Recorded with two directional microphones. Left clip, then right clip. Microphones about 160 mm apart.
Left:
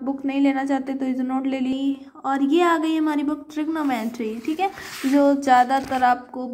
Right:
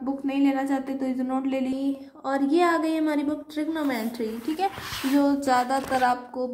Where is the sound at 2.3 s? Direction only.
25° left (ahead or behind).